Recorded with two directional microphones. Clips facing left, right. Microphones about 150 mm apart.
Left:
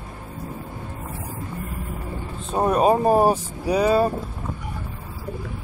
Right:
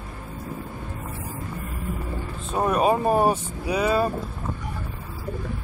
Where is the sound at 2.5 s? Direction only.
30° left (ahead or behind).